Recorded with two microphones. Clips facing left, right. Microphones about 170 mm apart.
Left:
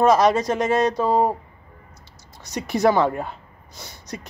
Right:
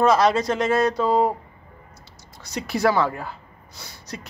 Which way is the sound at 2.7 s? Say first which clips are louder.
Left 3 dB; 20° left (ahead or behind).